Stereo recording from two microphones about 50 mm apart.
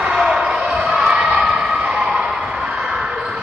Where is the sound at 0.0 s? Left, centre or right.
Centre.